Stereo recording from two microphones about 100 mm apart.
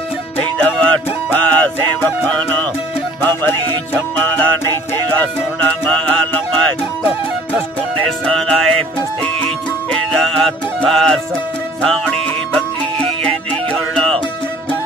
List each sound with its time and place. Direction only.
0.4 s music: 10° left (ahead or behind)
8.3 s music: 5° left (ahead or behind)
10.1 s music: 5° left (ahead or behind)
12.5 s music: 5° left (ahead or behind)